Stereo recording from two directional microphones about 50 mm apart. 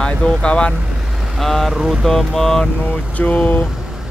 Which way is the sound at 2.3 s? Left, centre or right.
Centre.